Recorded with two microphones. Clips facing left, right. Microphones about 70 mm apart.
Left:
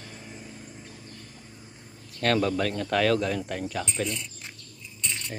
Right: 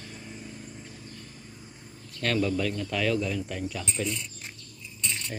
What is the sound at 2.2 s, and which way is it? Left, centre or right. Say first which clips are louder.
Speech: left 2 dB; left.